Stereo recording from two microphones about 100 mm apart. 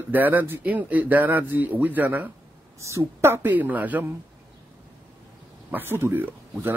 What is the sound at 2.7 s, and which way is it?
Speech, 30° right (ahead or behind).